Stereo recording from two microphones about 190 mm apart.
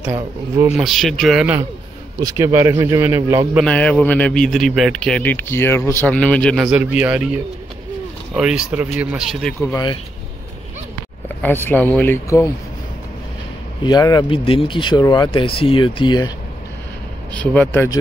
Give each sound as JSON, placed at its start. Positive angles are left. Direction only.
{"t": 0.0, "sound": "a man's voice", "side_deg": -10}
{"t": 2.2, "sound": "speech", "side_deg": -15}
{"t": 3.5, "sound": "a man's voice", "side_deg": 5}
{"t": 8.4, "sound": "a man's voice", "side_deg": -5}
{"t": 9.6, "sound": "speech", "side_deg": 20}
{"t": 11.4, "sound": "speech", "side_deg": 10}
{"t": 13.8, "sound": "speech", "side_deg": 20}
{"t": 17.3, "sound": "speech", "side_deg": 5}